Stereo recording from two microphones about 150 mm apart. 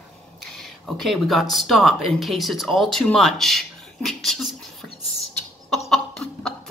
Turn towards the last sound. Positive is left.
turn(degrees=5)  # may be behind; listen again after turning